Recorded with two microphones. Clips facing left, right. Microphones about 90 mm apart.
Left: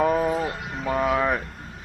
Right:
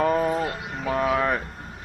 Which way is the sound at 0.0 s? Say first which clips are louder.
Even; 5° left (ahead or behind).